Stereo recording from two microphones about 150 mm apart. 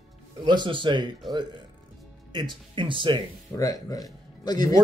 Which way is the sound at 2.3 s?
30° right (ahead or behind).